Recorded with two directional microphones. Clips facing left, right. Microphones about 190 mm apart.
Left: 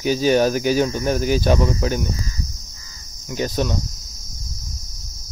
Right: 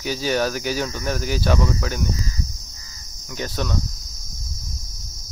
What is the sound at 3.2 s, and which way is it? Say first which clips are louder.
Speech: left 5 dB; 15° left (ahead or behind).